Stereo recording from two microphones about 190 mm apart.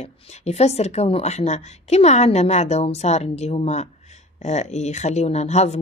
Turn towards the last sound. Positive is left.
turn(degrees=35)  # may be behind; listen again after turning